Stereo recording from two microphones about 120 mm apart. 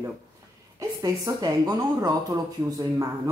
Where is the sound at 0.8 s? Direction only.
30° right (ahead or behind).